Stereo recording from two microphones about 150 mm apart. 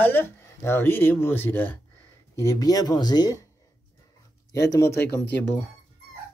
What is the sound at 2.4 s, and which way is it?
Speech, 25° left (ahead or behind).